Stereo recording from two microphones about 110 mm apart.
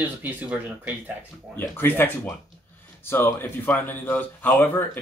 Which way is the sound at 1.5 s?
20° left (ahead or behind).